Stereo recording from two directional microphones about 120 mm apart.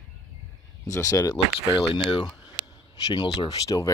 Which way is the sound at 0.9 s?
25° left (ahead or behind).